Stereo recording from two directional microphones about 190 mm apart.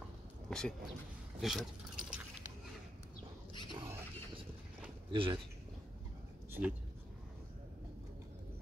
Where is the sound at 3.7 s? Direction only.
20° right (ahead or behind).